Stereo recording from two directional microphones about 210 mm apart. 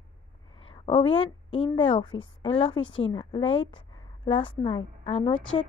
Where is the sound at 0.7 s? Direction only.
25° left (ahead or behind).